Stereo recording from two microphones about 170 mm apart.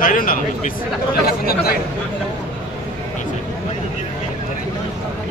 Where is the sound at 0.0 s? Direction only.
55° left (ahead or behind).